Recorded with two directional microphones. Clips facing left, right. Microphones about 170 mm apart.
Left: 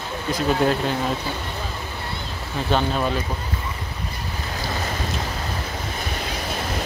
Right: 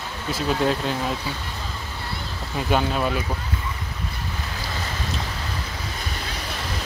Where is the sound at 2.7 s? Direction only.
5° right (ahead or behind).